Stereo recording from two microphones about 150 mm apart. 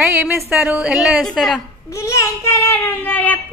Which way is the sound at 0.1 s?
15° right (ahead or behind).